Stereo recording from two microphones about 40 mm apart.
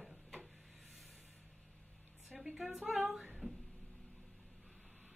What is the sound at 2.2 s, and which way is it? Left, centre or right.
A woman's voice, centre.